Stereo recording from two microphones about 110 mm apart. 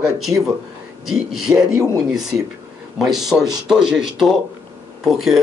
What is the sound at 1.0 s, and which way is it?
Speech, 5° right (ahead or behind).